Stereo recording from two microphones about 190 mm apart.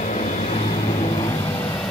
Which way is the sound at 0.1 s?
40° left (ahead or behind).